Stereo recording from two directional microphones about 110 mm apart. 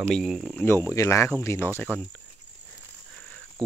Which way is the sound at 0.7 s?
25° left (ahead or behind).